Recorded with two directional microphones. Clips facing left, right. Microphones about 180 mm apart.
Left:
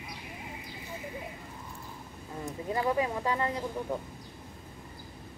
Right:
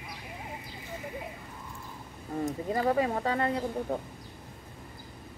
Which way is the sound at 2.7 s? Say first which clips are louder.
Right 1 dB; 55° right (ahead or behind).